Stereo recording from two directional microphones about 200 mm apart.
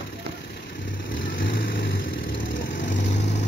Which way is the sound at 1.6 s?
60° left (ahead or behind).